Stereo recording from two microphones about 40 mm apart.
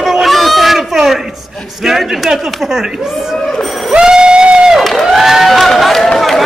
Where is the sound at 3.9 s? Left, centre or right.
Centre.